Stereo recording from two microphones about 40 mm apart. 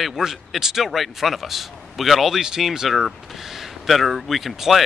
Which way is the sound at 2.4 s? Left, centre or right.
Centre.